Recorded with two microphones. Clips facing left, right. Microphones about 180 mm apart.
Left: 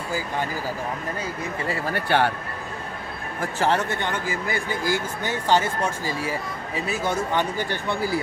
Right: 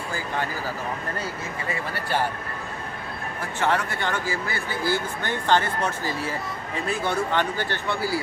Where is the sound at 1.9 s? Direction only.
70° left (ahead or behind).